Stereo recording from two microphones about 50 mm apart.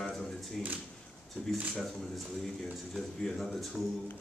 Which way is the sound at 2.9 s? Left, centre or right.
Centre.